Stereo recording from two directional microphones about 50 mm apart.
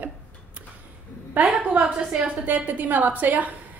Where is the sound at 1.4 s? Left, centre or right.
Right.